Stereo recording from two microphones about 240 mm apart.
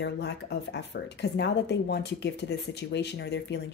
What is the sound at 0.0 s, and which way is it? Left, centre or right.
Speech, left.